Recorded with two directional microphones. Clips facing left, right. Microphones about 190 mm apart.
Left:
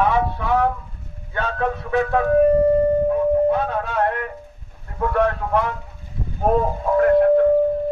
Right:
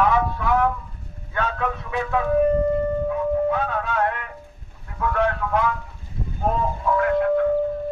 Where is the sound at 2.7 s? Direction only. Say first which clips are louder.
Left 6 dB; 40° left (ahead or behind).